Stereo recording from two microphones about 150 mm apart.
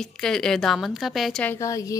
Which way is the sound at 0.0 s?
5° left (ahead or behind).